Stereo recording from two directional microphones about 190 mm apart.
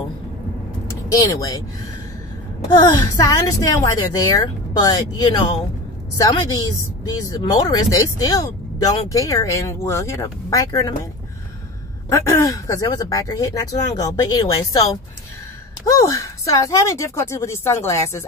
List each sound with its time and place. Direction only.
0.8 s speech: 15° left (ahead or behind)
2.7 s a woman's voice: 20° left (ahead or behind)
12.1 s a woman's voice: 15° left (ahead or behind)